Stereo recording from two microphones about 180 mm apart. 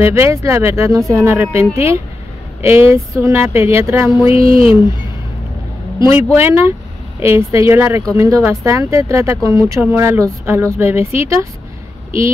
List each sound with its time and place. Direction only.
0.0 s speech: 15° right (ahead or behind)
5.9 s speech: 15° right (ahead or behind)